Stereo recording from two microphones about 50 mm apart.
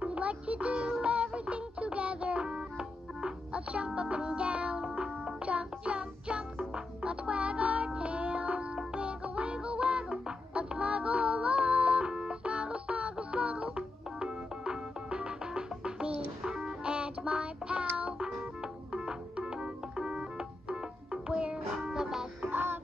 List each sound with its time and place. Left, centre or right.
0.0 s music: right
22.5 s music: right